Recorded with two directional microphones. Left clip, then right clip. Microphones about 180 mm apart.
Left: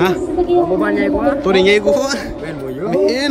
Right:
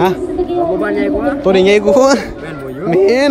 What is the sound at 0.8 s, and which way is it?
Speech, 40° left (ahead or behind).